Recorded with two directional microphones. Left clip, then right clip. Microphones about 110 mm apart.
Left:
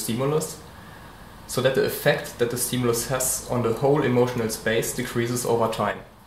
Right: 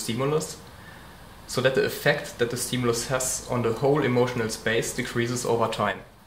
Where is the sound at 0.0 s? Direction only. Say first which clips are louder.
Left 1 dB; 25° right (ahead or behind).